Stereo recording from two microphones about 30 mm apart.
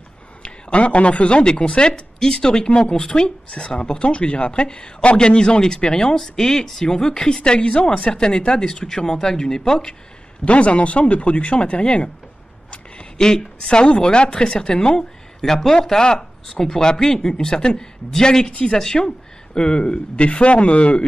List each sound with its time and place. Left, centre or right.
0.4 s a man's voice: left
1.4 s speech: left; by 6.9 s centre
6.9 s speech: left
10.4 s speech: left
13.2 s speech: left
13.7 s speech: left
15.0 s speech: centre
18.5 s speech: left
18.8 s speech: left
19.8 s speech: left